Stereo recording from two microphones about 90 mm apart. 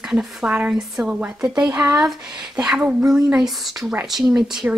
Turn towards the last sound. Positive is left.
turn(degrees=-5)  # may be behind; listen again after turning